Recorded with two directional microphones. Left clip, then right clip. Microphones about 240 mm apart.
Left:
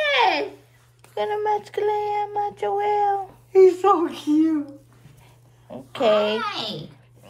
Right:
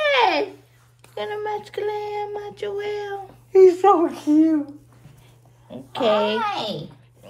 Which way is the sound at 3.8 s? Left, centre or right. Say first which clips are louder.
Right 3 dB; right.